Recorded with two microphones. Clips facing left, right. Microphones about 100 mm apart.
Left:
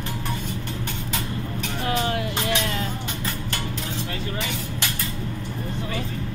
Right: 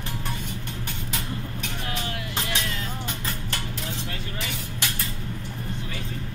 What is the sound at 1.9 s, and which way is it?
Music, 40° left (ahead or behind).